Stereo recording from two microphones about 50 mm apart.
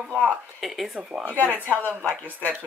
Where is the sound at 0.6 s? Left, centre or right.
Centre.